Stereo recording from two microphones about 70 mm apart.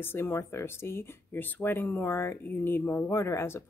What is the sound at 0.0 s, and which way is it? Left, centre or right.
Speech, left.